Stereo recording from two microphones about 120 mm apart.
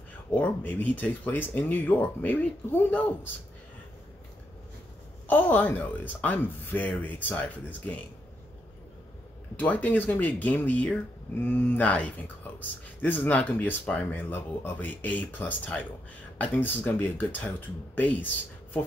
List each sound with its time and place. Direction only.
0.3 s speech: 15° left (ahead or behind)
5.3 s speech: 15° left (ahead or behind)
9.6 s speech: 15° left (ahead or behind)